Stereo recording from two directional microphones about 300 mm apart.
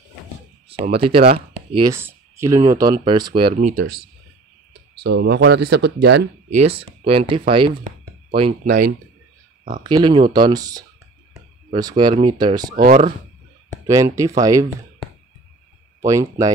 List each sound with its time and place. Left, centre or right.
0.7 s speech: right
3.7 s speech: right
5.0 s speech: right
6.6 s speech: centre
9.8 s speech: centre
12.7 s speech: right
13.8 s speech: centre
16.1 s speech: centre